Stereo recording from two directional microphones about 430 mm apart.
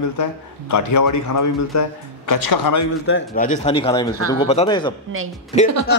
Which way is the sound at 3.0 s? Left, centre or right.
Left.